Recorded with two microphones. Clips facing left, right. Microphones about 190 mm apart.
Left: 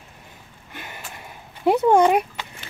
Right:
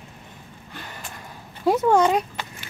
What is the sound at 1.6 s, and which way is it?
Speech, 20° left (ahead or behind).